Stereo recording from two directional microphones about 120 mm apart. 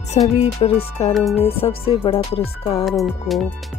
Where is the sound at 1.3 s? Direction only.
55° left (ahead or behind).